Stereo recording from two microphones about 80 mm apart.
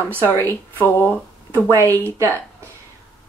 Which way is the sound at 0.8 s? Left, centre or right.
Left.